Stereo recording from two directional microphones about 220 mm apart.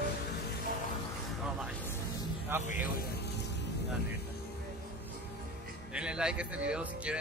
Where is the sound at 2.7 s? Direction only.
40° left (ahead or behind).